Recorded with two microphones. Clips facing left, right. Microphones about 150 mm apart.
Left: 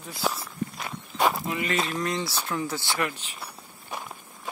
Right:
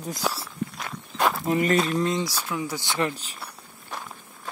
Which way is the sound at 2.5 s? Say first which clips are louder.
Even; 10° right (ahead or behind).